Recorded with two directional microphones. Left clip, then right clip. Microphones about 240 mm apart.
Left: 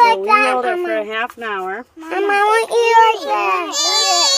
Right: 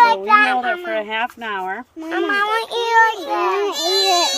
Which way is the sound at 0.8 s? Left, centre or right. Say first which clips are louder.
Left 2 dB; centre.